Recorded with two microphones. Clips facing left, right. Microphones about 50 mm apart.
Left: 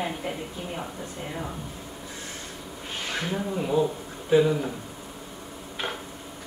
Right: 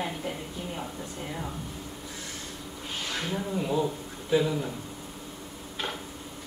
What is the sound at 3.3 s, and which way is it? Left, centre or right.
A woman's voice, centre.